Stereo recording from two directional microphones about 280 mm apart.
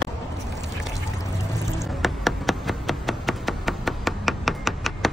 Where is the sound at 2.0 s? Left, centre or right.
Centre.